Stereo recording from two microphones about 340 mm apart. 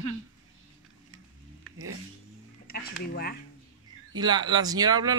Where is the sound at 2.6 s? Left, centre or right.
Left.